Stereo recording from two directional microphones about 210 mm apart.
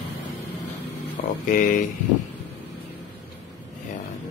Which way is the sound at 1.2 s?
45° left (ahead or behind).